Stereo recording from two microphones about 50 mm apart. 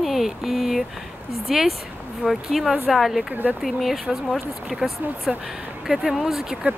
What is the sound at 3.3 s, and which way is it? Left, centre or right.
Speech, right.